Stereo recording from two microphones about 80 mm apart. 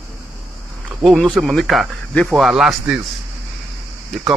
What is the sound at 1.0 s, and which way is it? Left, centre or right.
Speech, centre.